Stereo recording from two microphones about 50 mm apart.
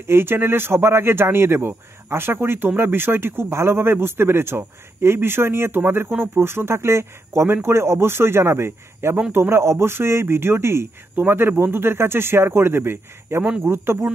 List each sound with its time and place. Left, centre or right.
0.0 s speech: right